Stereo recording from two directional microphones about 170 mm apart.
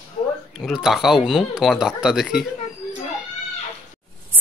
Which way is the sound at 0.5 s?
5° right (ahead or behind).